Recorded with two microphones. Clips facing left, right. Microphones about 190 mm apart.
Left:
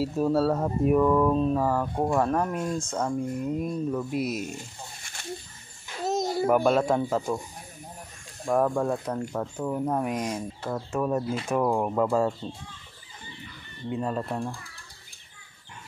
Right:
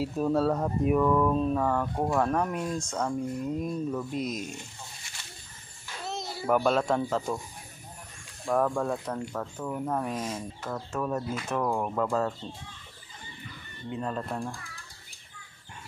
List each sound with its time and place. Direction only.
0.0 s speech: 5° left (ahead or behind)
6.0 s a sound: 45° left (ahead or behind)
6.4 s speech: 5° left (ahead or behind)
8.5 s speech: 10° left (ahead or behind)
13.8 s speech: 5° left (ahead or behind)